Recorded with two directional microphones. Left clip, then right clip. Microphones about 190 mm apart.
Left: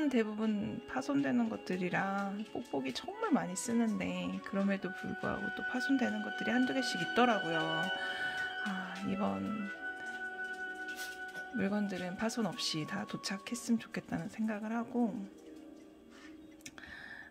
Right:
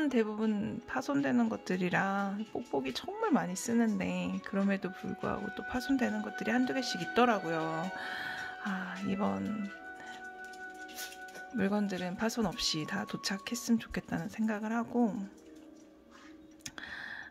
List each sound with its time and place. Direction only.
0.0 s speech: 5° right (ahead or behind)
11.5 s speech: 10° right (ahead or behind)